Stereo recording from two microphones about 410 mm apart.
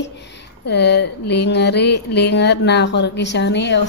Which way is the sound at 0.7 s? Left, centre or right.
Left.